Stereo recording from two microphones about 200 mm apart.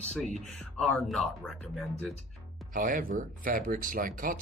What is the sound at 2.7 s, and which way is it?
Speech, 45° right (ahead or behind).